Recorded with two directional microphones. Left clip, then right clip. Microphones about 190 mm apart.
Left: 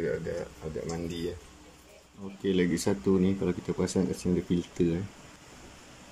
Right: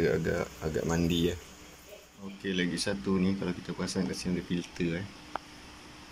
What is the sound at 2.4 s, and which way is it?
Speech, 25° left (ahead or behind).